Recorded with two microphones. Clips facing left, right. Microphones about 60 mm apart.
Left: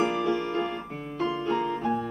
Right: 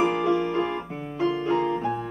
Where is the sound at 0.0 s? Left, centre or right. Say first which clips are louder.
Right 3 dB; centre.